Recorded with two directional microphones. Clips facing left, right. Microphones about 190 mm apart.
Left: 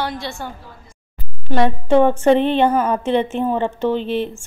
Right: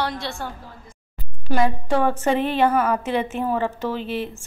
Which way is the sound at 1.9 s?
25° left (ahead or behind).